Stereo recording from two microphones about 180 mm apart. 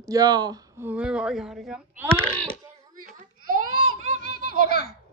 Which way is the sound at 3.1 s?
45° right (ahead or behind).